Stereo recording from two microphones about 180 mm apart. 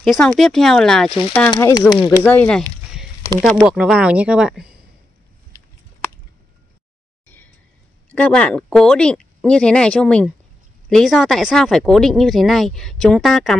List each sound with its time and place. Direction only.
0.0 s speech: centre (ahead or behind)
1.5 s speech: 20° left (ahead or behind)
2.2 s speech: 10° left (ahead or behind)
3.5 s speech: 5° right (ahead or behind)
8.1 s speech: 5° left (ahead or behind)